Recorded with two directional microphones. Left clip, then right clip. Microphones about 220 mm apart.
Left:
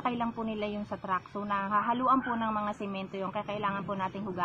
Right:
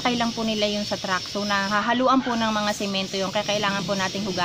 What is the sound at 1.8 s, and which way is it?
Speech, 20° right (ahead or behind).